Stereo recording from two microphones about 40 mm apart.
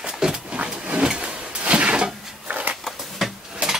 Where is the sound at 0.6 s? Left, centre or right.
Right.